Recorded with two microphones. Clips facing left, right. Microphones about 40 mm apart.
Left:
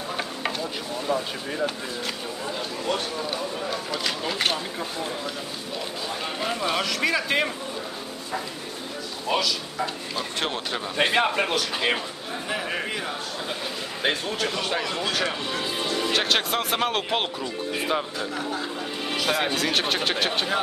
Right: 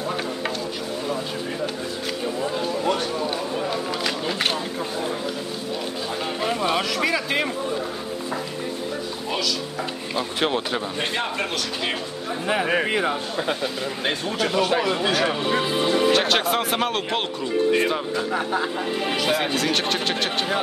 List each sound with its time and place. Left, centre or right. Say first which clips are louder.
3.9 s speech: right 2 dB; centre
6.4 s speech: right 3 dB; centre
10.1 s speech: right 7 dB; centre
11.3 s speech: left 2 dB; centre
12.4 s speech: right 7 dB; right
14.0 s speech: even; centre
14.9 s speech: right 5 dB; centre
16.1 s speech: right 4 dB; centre
18.3 s speech: right 7 dB; right
19.1 s speech: even; centre